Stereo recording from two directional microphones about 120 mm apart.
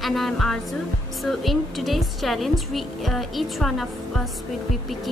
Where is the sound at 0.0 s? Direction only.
Centre (ahead or behind).